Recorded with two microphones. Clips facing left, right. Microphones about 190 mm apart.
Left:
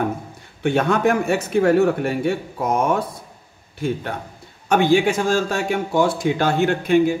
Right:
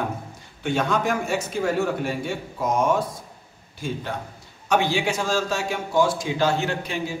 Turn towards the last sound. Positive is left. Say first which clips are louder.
# left 11 dB
turn(degrees=55)  # may be behind; listen again after turning